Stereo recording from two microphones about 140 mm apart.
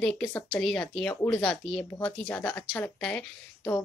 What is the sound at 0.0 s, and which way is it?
Speech, 10° left (ahead or behind).